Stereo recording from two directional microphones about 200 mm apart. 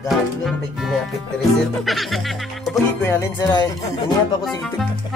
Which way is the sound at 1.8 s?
Centre (ahead or behind).